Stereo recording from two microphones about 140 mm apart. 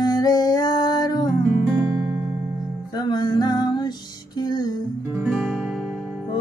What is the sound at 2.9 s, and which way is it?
Music, 30° left (ahead or behind).